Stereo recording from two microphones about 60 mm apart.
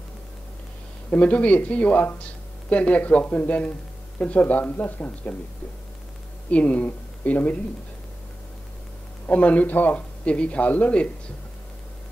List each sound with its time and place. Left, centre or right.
1.1 s a man's voice: left
6.5 s a man's voice: left
9.3 s a man's voice: left